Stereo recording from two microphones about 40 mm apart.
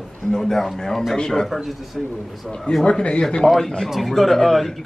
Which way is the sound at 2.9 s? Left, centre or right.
Left.